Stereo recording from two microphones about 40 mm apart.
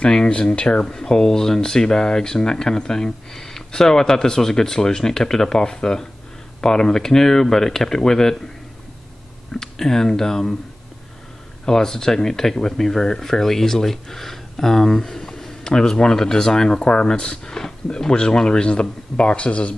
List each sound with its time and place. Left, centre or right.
0.0 s speech: left
9.5 s speech: centre
11.6 s speech: centre; by 19.7 s left